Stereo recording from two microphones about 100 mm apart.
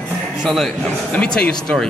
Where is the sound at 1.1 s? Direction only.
10° left (ahead or behind).